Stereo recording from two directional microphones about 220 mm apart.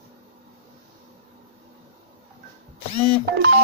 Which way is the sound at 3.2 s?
50° right (ahead or behind).